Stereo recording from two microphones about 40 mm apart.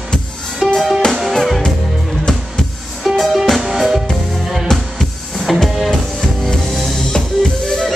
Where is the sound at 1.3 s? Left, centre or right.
Centre.